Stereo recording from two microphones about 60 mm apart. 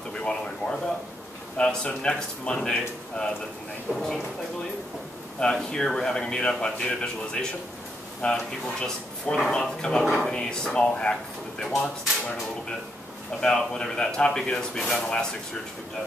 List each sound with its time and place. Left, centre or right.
0.2 s a sound: centre
1.6 s speech: centre
3.9 s speech: centre
5.4 s speech: centre
13.4 s speech: centre